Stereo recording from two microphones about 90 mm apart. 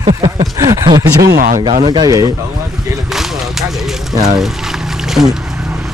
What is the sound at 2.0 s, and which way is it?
Speech, 40° right (ahead or behind).